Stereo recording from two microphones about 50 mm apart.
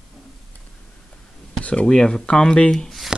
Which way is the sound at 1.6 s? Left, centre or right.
Left.